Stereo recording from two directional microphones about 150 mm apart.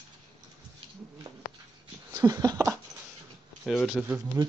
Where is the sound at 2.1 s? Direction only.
25° right (ahead or behind).